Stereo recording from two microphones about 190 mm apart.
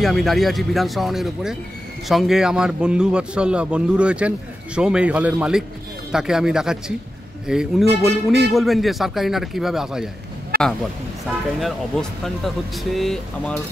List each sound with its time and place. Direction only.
0.0 s a man's voice: centre (ahead or behind)
10.5 s a sound: 50° right (ahead or behind)
11.6 s a man's voice: centre (ahead or behind)